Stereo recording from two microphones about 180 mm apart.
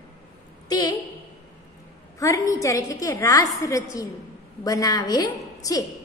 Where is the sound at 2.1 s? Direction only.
20° left (ahead or behind).